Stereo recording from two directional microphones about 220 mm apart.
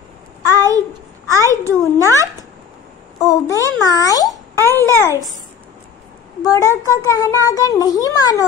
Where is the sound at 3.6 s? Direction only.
15° left (ahead or behind).